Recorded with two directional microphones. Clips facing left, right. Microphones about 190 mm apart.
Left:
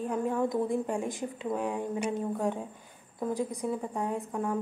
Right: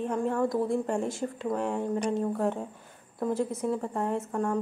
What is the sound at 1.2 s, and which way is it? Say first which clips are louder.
A woman's voice: right 2 dB; 5° left (ahead or behind).